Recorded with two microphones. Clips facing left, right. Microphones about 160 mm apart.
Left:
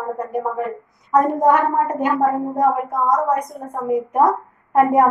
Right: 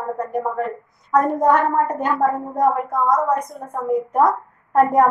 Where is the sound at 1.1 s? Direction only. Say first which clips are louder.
Left 1 dB; 15° left (ahead or behind).